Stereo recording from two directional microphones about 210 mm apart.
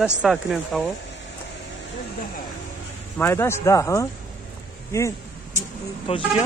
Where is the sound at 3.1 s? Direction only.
10° left (ahead or behind).